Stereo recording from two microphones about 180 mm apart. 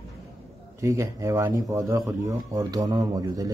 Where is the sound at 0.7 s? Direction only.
15° right (ahead or behind).